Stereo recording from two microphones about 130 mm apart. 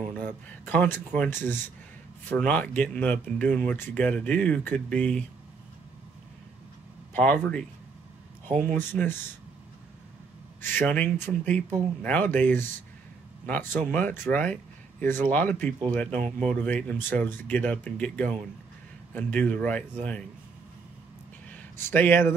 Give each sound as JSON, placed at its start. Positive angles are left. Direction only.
{"t": 0.2, "sound": "speech", "side_deg": 10}
{"t": 7.2, "sound": "speech", "side_deg": 10}
{"t": 8.7, "sound": "speech", "side_deg": 15}
{"t": 10.6, "sound": "speech", "side_deg": 15}
{"t": 16.2, "sound": "speech", "side_deg": -70}
{"t": 16.4, "sound": "speech", "side_deg": 10}
{"t": 21.5, "sound": "a sound", "side_deg": 15}